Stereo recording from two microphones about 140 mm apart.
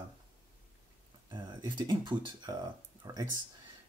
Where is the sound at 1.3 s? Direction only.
30° right (ahead or behind).